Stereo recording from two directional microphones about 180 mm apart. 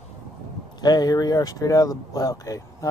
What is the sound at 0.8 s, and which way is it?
Speech, 20° left (ahead or behind).